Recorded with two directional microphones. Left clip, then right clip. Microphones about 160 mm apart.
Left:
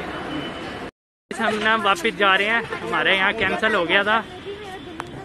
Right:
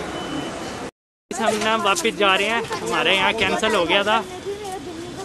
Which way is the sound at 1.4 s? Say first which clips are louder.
Even; 5° right (ahead or behind).